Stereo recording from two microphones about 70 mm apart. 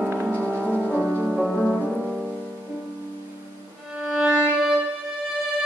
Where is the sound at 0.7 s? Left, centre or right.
Centre.